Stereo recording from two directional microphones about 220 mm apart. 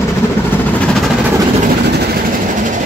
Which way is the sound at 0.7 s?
5° left (ahead or behind).